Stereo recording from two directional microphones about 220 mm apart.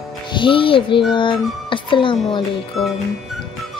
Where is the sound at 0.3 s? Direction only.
20° left (ahead or behind).